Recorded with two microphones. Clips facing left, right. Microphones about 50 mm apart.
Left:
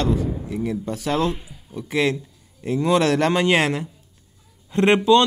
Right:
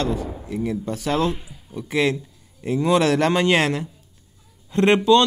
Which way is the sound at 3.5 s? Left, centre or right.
Centre.